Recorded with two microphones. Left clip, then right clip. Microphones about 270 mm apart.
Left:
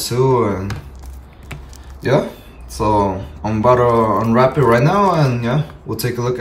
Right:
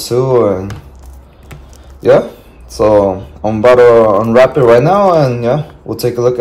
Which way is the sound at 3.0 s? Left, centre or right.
Right.